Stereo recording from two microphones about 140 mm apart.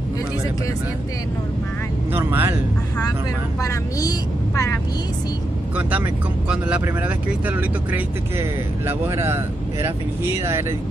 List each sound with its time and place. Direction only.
2.1 s speech: 15° right (ahead or behind)
3.6 s speech: 25° left (ahead or behind)
5.8 s speech: 10° right (ahead or behind)